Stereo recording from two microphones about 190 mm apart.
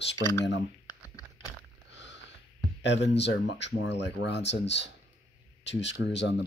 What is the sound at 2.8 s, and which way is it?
Speech, 65° left (ahead or behind).